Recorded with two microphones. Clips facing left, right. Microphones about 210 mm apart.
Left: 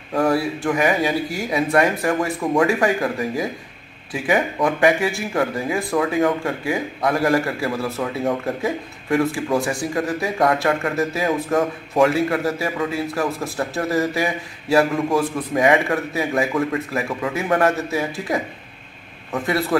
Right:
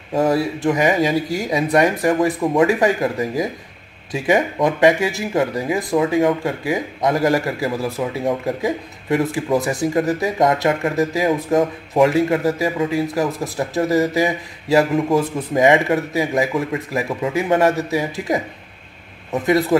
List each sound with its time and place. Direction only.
0.1 s a man's voice: 20° right (ahead or behind)